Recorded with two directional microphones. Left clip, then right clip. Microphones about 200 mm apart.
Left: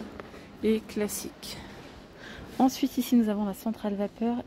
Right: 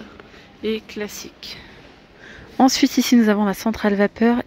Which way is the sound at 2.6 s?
15° right (ahead or behind).